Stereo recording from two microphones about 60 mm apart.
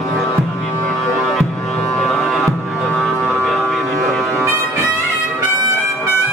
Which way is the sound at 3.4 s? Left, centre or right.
Centre.